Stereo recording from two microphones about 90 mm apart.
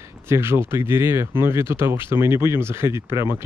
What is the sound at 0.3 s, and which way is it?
Speech, 30° right (ahead or behind).